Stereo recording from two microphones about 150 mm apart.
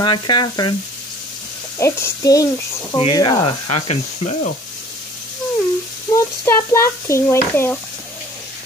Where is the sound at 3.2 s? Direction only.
35° left (ahead or behind).